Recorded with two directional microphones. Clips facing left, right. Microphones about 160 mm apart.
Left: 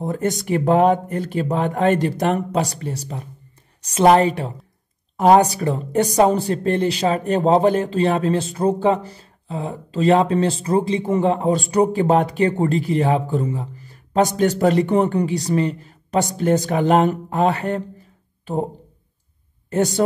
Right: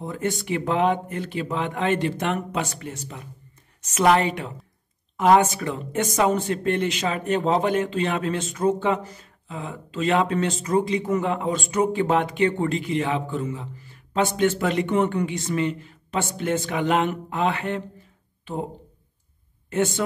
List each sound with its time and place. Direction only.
0.0 s speech: 40° left (ahead or behind)
19.7 s speech: 40° left (ahead or behind)